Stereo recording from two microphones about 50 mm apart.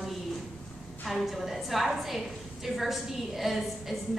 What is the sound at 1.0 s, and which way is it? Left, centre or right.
A woman's voice, centre.